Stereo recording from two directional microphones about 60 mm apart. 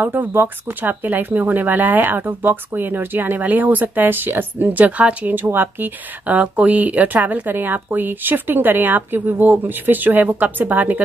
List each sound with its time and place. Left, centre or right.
0.0 s speech: right